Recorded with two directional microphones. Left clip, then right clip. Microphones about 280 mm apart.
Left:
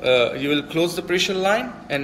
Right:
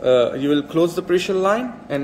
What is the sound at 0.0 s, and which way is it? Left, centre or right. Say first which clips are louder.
A man's voice: right 2 dB; right.